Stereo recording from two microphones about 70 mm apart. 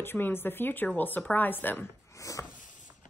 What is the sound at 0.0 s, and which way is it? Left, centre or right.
Speech, left.